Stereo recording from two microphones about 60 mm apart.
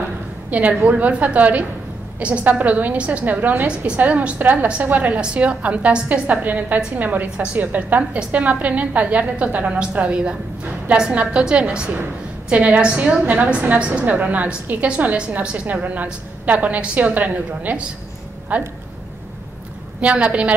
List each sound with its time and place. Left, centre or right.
0.5 s a woman's voice: right
3.6 s a woman's voice: centre
20.0 s a woman's voice: right